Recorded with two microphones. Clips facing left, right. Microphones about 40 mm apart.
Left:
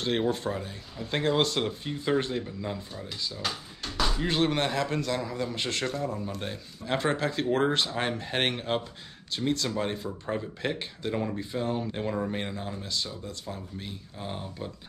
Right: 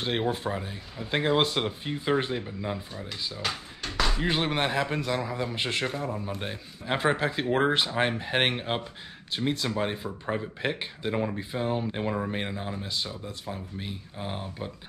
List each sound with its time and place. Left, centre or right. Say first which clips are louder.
0.0 s speech: left 1 dB; centre